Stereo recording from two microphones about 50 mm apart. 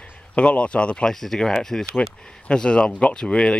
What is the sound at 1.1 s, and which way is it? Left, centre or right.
Speech, centre.